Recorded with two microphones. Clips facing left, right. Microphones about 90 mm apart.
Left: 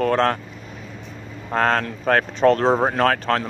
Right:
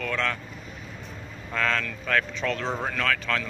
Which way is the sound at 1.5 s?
45° left (ahead or behind).